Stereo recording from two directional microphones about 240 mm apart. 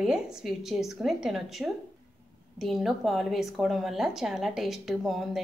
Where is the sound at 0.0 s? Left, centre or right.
Centre.